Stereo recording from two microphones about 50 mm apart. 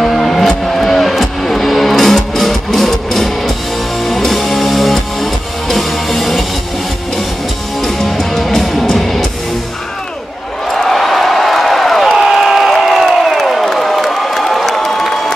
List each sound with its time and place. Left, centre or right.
0.0 s music: centre
7.8 s music: centre
10.7 s a sound: centre
12.7 s crowd: centre